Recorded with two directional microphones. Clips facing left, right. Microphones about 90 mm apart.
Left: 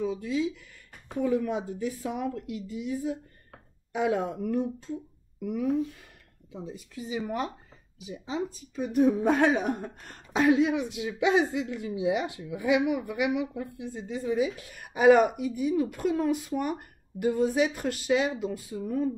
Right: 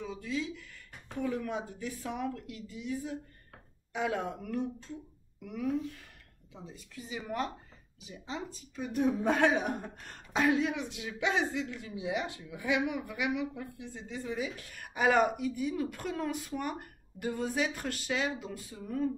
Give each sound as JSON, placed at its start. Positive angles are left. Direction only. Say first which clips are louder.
{"t": 0.0, "sound": "a woman's voice", "louder": "left 8 dB", "side_deg": 15}